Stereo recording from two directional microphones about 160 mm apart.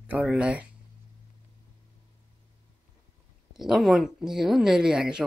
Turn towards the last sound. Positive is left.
turn(degrees=-5)  # may be behind; listen again after turning